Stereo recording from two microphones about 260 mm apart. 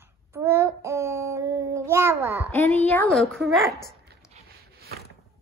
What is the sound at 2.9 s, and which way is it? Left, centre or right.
Speech, centre.